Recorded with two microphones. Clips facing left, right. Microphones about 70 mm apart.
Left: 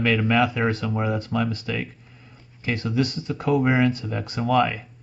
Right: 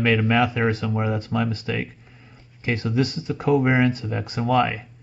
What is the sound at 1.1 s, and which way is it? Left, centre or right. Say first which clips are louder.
Speech: even; right.